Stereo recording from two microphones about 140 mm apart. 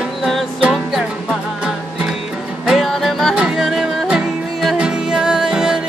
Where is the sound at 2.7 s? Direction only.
Centre (ahead or behind).